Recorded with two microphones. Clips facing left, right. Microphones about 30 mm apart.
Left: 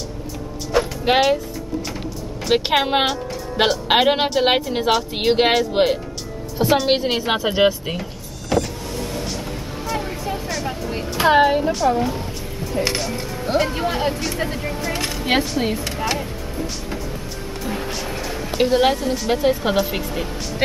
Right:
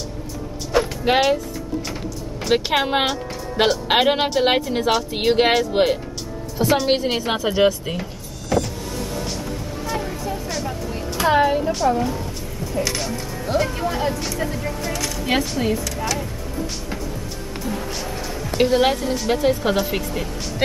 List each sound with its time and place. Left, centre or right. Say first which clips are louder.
0.7 s music: even; centre
2.7 s a woman's voice: left 1 dB; centre
6.9 s speech: left 1 dB; centre
8.5 s power windows: left 1 dB; left
10.9 s a sound: left 3 dB; left
13.5 s speech: left 2 dB; left
14.9 s a sound: left 2 dB; left
15.6 s speech: even; left
18.6 s speech: even; centre